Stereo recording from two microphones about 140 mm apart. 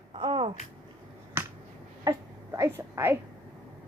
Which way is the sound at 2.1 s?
20° right (ahead or behind).